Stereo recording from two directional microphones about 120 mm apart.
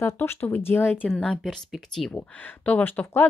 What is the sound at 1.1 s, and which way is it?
Speech, 5° left (ahead or behind).